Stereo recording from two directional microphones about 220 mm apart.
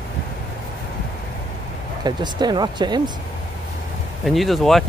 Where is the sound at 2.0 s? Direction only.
20° right (ahead or behind).